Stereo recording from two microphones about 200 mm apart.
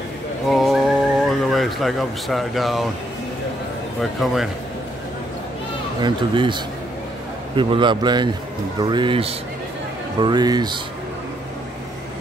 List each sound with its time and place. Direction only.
0.5 s a sound: centre (ahead or behind)
4.0 s speech: centre (ahead or behind)
6.0 s a man's voice: 25° right (ahead or behind)